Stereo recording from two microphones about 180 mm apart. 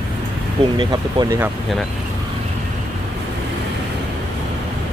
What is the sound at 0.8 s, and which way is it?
Speech, 25° right (ahead or behind).